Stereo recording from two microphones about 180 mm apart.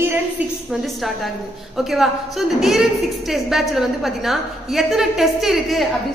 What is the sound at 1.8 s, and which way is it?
A woman's voice, centre (ahead or behind).